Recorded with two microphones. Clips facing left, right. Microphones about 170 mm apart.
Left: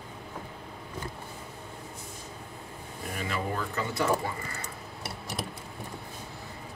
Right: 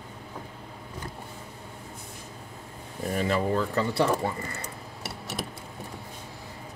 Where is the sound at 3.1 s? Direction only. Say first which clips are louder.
Right 7 dB; 35° right (ahead or behind).